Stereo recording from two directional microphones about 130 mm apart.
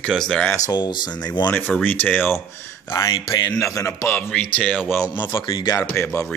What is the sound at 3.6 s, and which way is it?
Speech, 25° left (ahead or behind).